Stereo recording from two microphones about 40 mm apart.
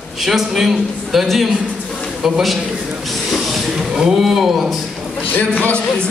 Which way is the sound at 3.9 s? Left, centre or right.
Centre.